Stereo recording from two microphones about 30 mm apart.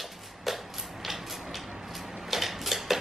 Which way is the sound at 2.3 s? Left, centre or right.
Centre.